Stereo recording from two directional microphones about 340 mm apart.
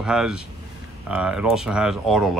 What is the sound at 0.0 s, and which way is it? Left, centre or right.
Speech, centre.